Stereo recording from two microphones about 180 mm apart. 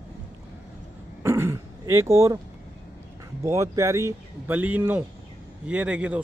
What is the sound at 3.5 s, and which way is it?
Speech, 15° right (ahead or behind).